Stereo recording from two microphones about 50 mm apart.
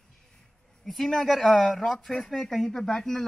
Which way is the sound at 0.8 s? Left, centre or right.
Centre.